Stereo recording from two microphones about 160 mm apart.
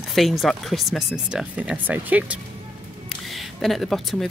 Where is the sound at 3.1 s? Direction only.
Centre (ahead or behind).